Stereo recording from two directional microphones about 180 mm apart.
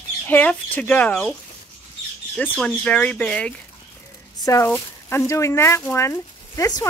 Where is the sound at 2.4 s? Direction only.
5° left (ahead or behind).